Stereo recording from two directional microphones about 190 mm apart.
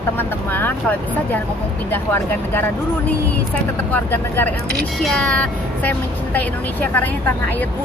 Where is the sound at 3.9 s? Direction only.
10° left (ahead or behind).